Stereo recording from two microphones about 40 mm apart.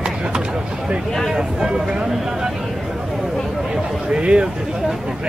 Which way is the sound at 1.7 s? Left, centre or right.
Right.